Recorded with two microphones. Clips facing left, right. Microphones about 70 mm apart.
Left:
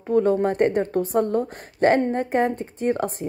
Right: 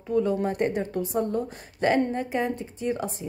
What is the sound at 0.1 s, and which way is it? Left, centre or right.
A woman's voice, left.